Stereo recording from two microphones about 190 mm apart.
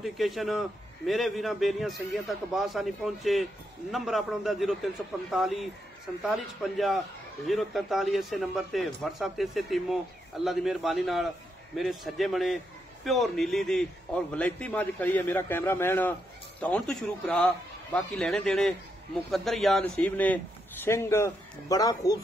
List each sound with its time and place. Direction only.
0.0 s a man's voice: centre (ahead or behind); by 22.2 s 20° left (ahead or behind)